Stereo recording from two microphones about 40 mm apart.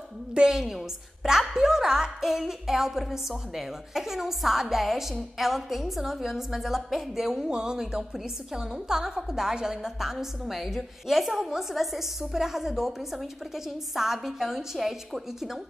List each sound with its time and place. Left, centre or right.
0.3 s a woman's voice: centre
10.4 s a woman's voice: centre
13.9 s a woman's voice: centre